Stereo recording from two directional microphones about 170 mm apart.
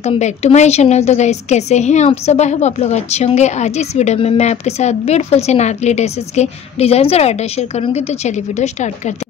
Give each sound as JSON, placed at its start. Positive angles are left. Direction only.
{"t": 0.0, "sound": "a woman's voice", "side_deg": 40}